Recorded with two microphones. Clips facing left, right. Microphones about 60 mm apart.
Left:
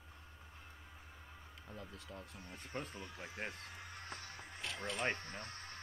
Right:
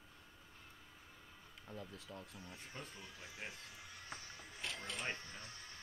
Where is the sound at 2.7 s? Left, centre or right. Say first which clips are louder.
Left 10 dB; left.